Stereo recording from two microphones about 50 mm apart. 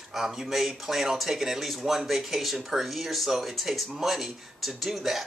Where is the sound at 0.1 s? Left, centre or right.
Centre.